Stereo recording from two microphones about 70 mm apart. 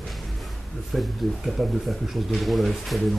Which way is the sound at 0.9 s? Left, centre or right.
Centre.